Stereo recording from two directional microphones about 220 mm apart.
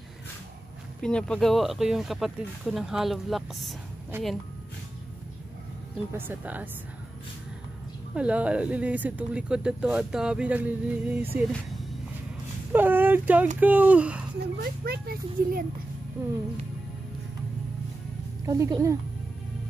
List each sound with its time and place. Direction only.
1.0 s speech: 5° left (ahead or behind)
4.1 s speech: 10° right (ahead or behind)
6.1 s speech: 10° right (ahead or behind)
8.1 s speech: 5° right (ahead or behind)
12.7 s speech: 10° right (ahead or behind)
14.6 s speech: 45° right (ahead or behind)
18.4 s speech: 15° right (ahead or behind)